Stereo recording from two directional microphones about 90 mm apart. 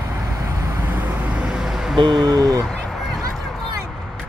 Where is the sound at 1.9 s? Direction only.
60° right (ahead or behind).